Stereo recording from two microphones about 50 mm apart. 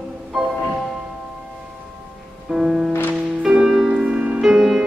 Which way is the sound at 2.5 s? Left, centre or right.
Centre.